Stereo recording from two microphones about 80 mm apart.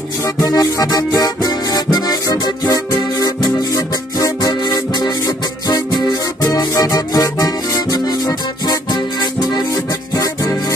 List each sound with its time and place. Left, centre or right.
0.2 s music: left
10.1 s music: left